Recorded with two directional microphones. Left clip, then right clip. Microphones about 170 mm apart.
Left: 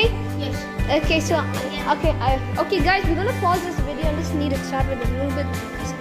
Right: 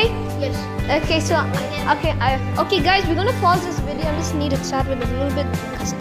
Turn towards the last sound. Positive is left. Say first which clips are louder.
# right 2 dB
turn(degrees=-10)  # may be behind; listen again after turning